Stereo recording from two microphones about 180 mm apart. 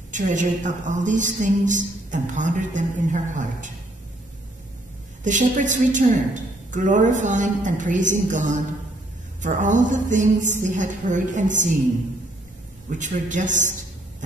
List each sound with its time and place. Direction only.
0.1 s a woman's voice: 45° right (ahead or behind)
5.2 s a woman's voice: 45° right (ahead or behind)
12.9 s a woman's voice: 45° right (ahead or behind)